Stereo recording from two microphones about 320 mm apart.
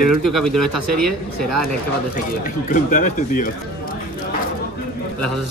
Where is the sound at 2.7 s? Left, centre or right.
Left.